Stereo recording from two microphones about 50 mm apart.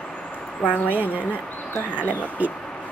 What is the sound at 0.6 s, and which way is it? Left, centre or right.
Speech, left.